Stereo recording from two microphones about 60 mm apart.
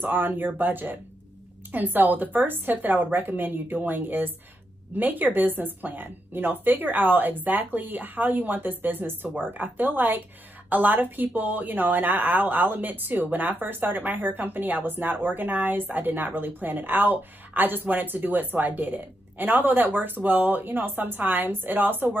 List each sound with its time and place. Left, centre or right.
0.0 s speech: right